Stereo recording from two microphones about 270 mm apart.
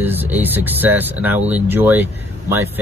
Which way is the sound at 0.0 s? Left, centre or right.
Centre.